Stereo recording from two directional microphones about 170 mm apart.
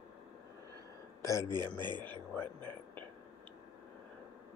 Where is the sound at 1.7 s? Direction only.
25° right (ahead or behind).